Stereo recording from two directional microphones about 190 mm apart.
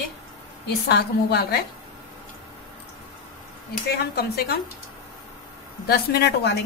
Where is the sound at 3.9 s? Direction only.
55° left (ahead or behind).